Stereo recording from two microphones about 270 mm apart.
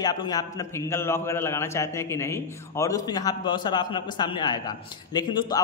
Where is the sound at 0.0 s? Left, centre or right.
Centre.